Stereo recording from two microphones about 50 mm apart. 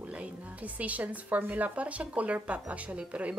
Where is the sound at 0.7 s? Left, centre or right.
Right.